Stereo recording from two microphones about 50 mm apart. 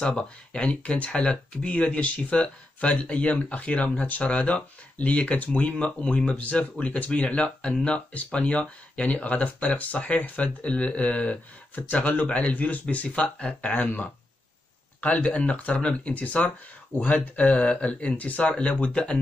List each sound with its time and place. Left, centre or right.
0.2 s speech: left
13.7 s speech: left